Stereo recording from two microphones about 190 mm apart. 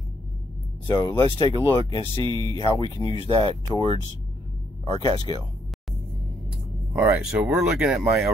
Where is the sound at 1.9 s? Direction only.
25° left (ahead or behind).